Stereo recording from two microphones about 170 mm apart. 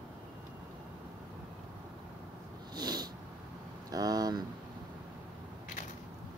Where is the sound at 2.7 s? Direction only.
25° right (ahead or behind).